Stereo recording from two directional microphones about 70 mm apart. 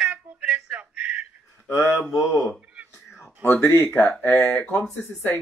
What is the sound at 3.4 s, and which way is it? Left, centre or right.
Speech, left.